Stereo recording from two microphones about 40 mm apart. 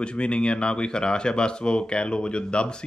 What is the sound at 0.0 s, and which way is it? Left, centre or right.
Speech, left.